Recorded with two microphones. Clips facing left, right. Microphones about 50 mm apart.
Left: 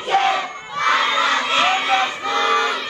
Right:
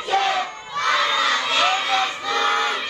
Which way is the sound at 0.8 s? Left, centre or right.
Left.